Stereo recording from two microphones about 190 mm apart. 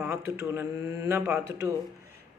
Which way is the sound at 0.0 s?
15° right (ahead or behind).